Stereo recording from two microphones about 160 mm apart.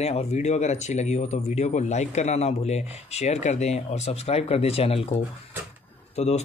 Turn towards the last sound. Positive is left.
turn(degrees=45)  # may be behind; listen again after turning